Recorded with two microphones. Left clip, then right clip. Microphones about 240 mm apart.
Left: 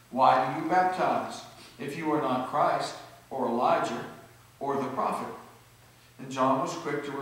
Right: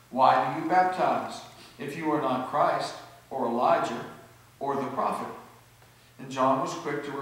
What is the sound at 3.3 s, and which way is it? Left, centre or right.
Speech, right.